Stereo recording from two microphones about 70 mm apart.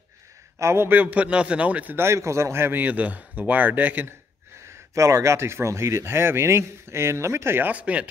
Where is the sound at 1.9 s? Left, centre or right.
Right.